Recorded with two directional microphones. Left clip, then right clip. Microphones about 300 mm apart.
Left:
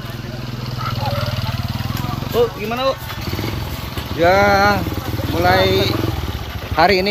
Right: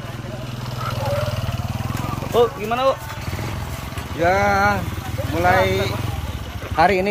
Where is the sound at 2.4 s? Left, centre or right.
Centre.